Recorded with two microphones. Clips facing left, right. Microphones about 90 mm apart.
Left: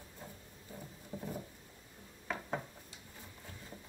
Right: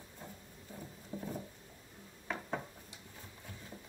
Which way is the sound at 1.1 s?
20° left (ahead or behind).